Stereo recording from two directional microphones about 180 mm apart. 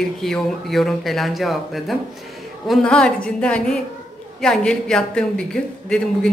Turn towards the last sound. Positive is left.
turn(degrees=5)  # may be behind; listen again after turning